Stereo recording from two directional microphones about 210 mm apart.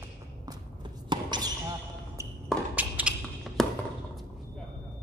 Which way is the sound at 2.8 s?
5° right (ahead or behind).